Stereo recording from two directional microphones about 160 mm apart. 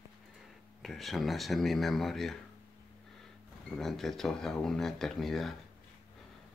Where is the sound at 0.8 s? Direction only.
Centre (ahead or behind).